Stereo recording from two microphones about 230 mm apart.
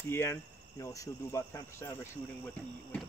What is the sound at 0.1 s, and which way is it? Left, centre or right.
Speech, centre.